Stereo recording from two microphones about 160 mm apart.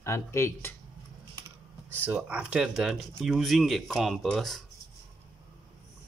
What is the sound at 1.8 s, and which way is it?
Speech, 10° right (ahead or behind).